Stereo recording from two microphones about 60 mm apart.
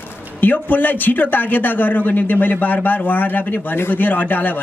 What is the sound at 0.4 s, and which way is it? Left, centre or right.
A man's voice, left.